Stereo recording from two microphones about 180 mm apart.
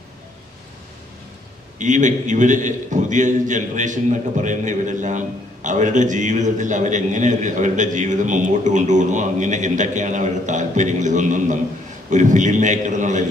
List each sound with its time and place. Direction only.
1.8 s a man's voice: 45° right (ahead or behind)